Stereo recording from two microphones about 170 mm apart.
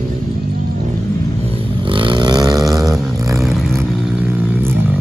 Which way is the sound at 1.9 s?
30° right (ahead or behind).